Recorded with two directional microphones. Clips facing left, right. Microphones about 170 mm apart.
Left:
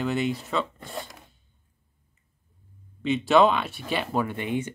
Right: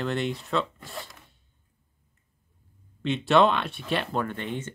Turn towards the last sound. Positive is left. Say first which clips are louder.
# left 3 dB
turn(degrees=10)  # may be behind; listen again after turning